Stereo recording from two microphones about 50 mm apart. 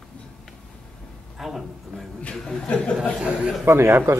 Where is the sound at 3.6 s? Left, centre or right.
Right.